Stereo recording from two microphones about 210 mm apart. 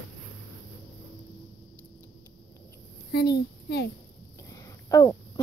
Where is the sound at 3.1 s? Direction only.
50° left (ahead or behind).